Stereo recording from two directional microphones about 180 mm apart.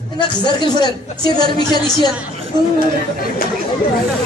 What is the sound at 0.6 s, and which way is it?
A woman's voice, 25° left (ahead or behind).